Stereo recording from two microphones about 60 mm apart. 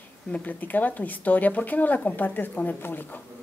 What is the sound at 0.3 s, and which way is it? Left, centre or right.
Speech, left.